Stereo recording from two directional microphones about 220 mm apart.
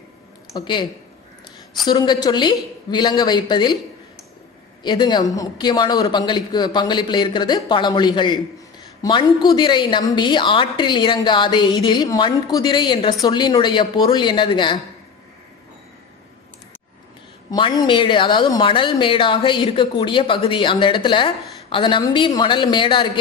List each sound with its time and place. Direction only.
0.5 s speech: 20° left (ahead or behind)
1.9 s a woman's voice: 20° left (ahead or behind)
4.8 s a woman's voice: 20° left (ahead or behind)
17.5 s a woman's voice: 20° left (ahead or behind)